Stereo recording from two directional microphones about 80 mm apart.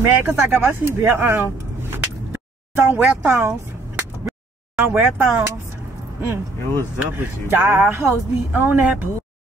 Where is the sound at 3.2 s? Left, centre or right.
Right.